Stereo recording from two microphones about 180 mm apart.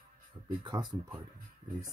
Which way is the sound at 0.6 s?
25° right (ahead or behind).